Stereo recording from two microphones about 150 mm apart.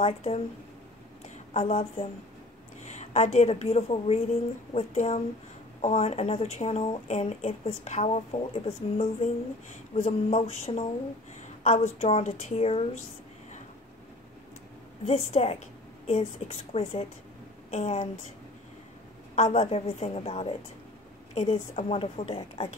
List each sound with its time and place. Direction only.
0.0 s speech: 45° left (ahead or behind)
1.5 s speech: 45° left (ahead or behind)
15.0 s speech: 45° left (ahead or behind)
19.3 s speech: 45° left (ahead or behind)